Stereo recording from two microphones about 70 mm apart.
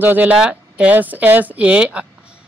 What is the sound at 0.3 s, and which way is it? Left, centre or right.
A woman's voice, centre.